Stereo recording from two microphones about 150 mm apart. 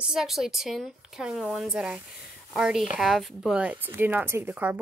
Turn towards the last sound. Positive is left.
turn(degrees=-10)  # may be behind; listen again after turning